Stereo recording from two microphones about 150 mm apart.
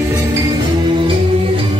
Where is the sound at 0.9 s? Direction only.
35° right (ahead or behind).